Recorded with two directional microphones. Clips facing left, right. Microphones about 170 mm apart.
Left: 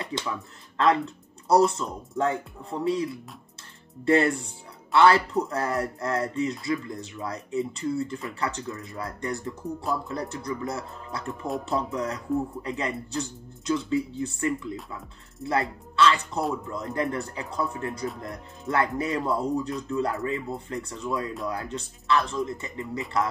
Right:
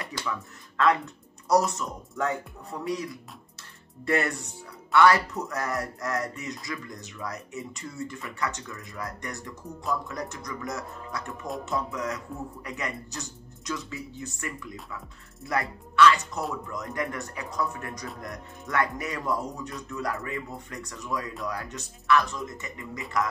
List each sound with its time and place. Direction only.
0.0 s speech: 25° left (ahead or behind)
11.7 s music: 30° left (ahead or behind)
12.6 s speech: 30° left (ahead or behind)